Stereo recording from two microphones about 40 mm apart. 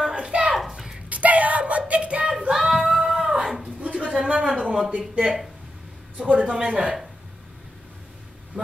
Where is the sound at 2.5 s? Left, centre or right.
Centre.